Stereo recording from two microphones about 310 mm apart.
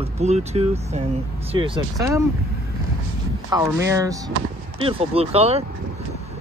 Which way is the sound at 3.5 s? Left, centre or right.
Centre.